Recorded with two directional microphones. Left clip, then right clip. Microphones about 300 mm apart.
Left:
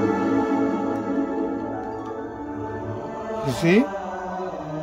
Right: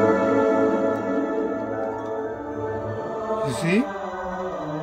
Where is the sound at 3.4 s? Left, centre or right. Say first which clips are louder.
Left 7 dB; centre.